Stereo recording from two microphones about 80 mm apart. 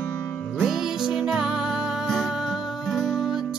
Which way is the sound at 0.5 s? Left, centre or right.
Centre.